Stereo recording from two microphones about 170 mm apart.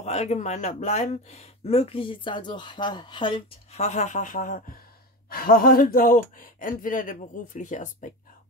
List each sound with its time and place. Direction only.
0.0 s speech: 40° left (ahead or behind)